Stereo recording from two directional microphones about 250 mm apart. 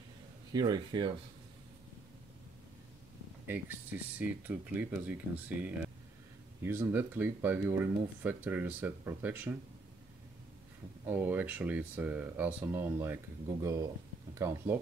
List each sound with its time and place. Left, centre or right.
0.5 s speech: centre
3.4 s speech: centre
6.6 s speech: centre
11.1 s speech: centre